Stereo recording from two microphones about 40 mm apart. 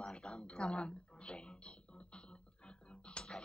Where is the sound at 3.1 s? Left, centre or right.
Left.